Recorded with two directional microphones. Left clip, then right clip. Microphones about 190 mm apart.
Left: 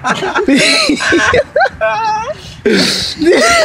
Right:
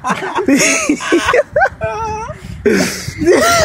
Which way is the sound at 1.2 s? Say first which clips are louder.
Even; 10° left (ahead or behind).